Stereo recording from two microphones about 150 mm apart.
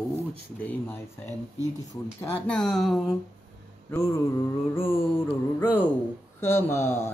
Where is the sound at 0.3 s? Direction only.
10° left (ahead or behind).